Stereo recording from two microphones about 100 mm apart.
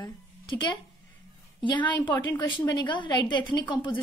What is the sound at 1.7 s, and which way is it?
A woman's voice, 50° left (ahead or behind).